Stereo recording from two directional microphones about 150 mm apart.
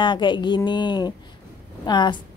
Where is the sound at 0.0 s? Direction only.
30° left (ahead or behind).